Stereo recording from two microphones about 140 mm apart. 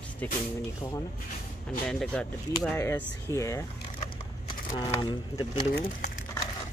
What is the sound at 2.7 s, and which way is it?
Speech, 15° left (ahead or behind).